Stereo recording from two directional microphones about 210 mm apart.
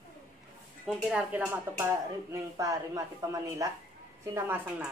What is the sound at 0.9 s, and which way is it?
Speech, 5° right (ahead or behind).